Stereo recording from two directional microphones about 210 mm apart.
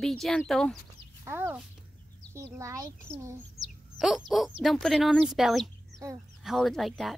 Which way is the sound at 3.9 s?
Centre (ahead or behind).